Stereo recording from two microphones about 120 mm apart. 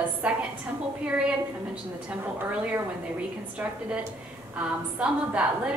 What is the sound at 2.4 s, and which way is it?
A woman's voice, 15° right (ahead or behind).